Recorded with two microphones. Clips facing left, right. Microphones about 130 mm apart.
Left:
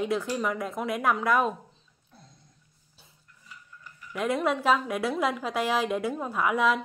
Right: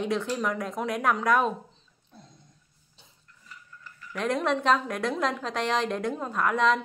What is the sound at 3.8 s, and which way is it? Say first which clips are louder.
Speech: left 1 dB; 10° left (ahead or behind).